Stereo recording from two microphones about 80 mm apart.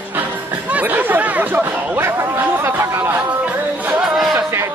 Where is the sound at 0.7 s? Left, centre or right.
Right.